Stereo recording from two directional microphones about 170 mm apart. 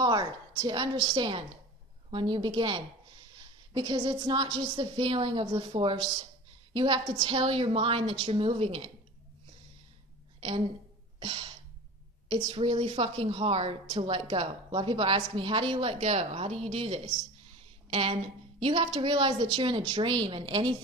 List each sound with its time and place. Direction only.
0.0 s a woman's voice: 25° right (ahead or behind)
11.1 s music: 30° right (ahead or behind)
12.3 s a woman's voice: 25° right (ahead or behind)